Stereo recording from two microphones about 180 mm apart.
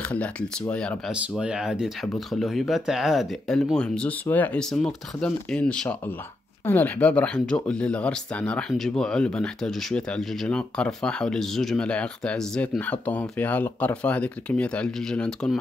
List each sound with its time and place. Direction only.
0.0 s speech: 5° left (ahead or behind)